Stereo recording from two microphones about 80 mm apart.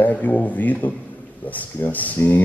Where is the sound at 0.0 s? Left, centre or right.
Centre.